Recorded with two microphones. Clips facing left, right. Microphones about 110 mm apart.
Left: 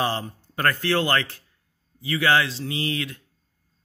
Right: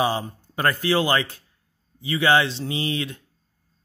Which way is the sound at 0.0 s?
15° right (ahead or behind).